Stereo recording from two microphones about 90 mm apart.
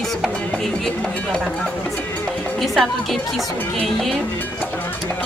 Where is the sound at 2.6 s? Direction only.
Centre (ahead or behind).